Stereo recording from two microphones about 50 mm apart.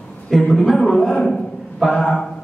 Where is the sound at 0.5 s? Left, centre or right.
Centre.